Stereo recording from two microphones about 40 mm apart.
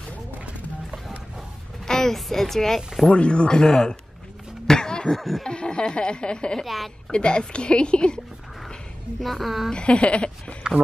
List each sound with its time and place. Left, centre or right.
1.9 s speech: centre
3.1 s a woman's voice: left
4.6 s a sound: centre
5.1 s snicker: centre
5.5 s a woman's voice: left
6.6 s speech: centre
7.1 s a woman's voice: left
9.2 s speech: centre
9.7 s a woman's voice: left